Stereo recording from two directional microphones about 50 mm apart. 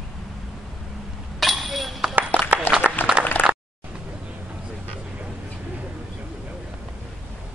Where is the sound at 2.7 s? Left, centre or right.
Left.